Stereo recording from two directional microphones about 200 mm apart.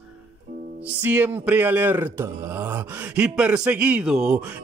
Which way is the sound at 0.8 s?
10° right (ahead or behind).